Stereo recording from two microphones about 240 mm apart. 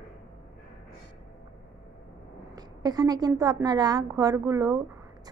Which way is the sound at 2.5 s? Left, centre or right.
Centre.